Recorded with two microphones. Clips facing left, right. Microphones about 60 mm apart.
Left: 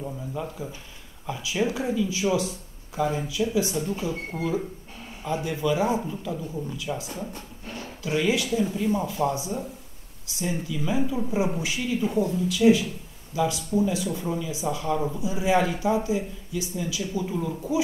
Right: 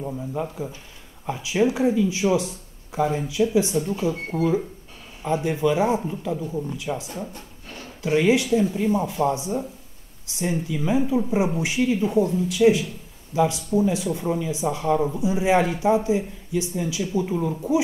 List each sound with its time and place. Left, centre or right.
0.0 s speech: right
10.9 s speech: right
12.1 s speech: centre